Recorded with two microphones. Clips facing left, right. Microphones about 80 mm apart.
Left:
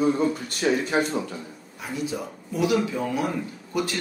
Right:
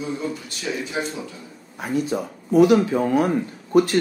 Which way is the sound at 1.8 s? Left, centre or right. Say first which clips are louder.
Right 6 dB; right.